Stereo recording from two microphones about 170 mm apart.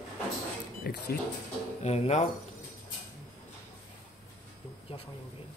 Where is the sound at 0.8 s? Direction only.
65° left (ahead or behind).